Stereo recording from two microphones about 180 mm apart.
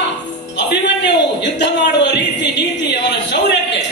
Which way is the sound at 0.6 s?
75° left (ahead or behind).